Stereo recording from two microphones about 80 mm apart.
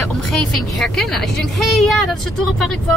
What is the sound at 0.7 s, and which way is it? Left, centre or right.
Speech, centre.